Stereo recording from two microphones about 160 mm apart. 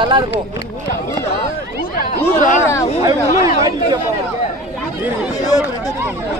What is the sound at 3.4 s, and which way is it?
Speech, 20° right (ahead or behind).